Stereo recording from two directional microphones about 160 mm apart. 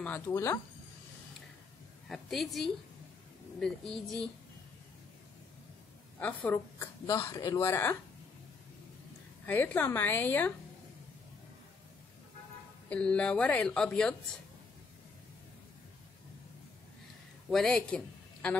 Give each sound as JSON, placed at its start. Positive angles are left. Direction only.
{"t": 0.0, "sound": "speech", "side_deg": 10}
{"t": 2.0, "sound": "speech", "side_deg": 0}
{"t": 6.1, "sound": "speech", "side_deg": 10}
{"t": 9.5, "sound": "speech", "side_deg": 10}
{"t": 12.9, "sound": "speech", "side_deg": 5}
{"t": 17.5, "sound": "speech", "side_deg": 5}